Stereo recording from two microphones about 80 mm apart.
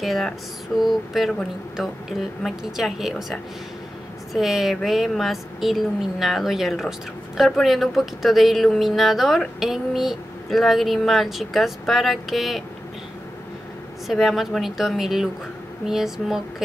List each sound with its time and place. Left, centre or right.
0.0 s speech: centre
14.1 s speech: centre